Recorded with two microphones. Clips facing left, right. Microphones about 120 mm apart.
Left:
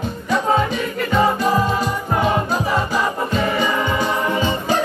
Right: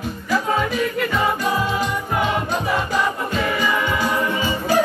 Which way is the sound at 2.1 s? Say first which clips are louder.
Left 4 dB; 35° left (ahead or behind).